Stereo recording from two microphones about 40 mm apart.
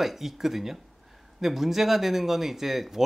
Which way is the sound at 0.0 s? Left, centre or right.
Centre.